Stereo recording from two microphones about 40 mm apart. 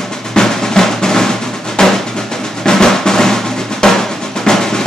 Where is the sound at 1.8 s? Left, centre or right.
Centre.